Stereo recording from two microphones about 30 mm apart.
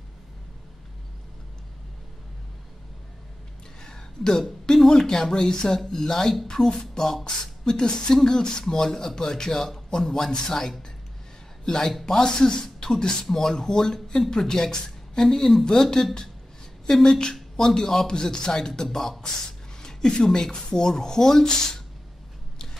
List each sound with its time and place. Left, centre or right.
3.8 s a sound: left
4.8 s speech: centre
12.6 s beatboxing: centre
13.2 s speech: centre
19.8 s a sound: left
20.2 s speech: centre